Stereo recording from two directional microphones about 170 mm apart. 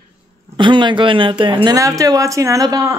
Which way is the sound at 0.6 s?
30° right (ahead or behind).